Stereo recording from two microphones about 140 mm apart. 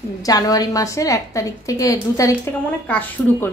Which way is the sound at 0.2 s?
25° left (ahead or behind).